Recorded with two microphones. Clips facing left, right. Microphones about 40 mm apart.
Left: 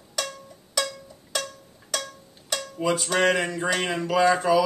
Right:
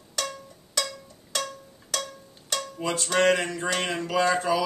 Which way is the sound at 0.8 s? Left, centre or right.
Centre.